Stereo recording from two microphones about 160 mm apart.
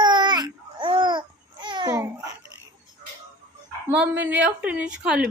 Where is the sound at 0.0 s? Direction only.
30° right (ahead or behind).